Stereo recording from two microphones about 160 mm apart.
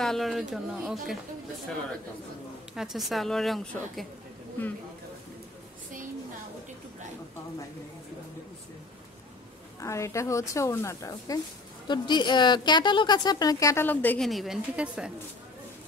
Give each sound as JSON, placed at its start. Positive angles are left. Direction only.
{"t": 0.0, "sound": "a woman's voice", "side_deg": 0}
{"t": 2.7, "sound": "a woman's voice", "side_deg": 0}
{"t": 9.8, "sound": "a woman's voice", "side_deg": 20}